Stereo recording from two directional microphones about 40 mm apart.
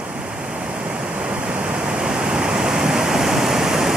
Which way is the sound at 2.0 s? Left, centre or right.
Centre.